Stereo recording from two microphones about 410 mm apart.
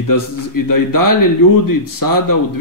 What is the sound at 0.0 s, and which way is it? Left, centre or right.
Speech, left.